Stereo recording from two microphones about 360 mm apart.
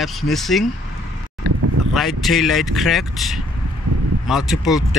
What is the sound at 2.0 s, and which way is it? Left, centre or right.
Speech, centre.